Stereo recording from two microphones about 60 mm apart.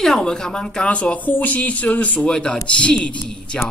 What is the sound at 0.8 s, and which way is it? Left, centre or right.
A man's voice, left.